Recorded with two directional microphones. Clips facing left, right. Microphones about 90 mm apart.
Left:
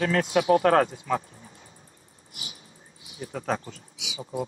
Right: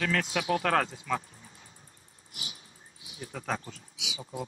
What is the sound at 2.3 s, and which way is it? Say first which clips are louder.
Dog: left 1 dB; 20° left (ahead or behind).